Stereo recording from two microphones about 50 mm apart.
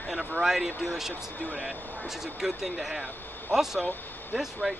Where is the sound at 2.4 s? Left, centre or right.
Centre.